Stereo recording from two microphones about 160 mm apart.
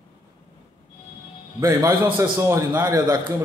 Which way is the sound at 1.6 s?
20° right (ahead or behind).